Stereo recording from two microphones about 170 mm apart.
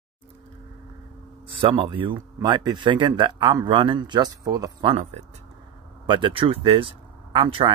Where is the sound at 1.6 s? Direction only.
30° right (ahead or behind).